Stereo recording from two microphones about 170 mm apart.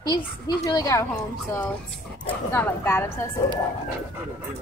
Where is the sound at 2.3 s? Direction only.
10° left (ahead or behind).